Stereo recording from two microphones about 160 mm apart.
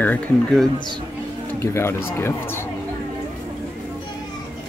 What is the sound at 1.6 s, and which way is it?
Speech, 15° left (ahead or behind).